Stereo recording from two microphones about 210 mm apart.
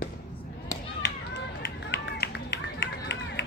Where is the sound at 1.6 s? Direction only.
55° left (ahead or behind).